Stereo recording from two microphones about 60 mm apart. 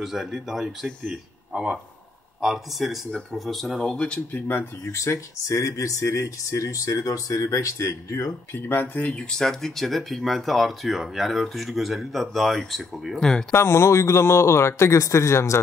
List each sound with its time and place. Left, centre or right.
0.0 s speech: centre
0.8 s speech: centre
1.5 s speech: centre
3.9 s speech: centre
4.3 s speech: left
4.9 s speech: left
8.5 s speech: left
9.0 s speech: centre
13.2 s speech: centre
13.5 s speech: left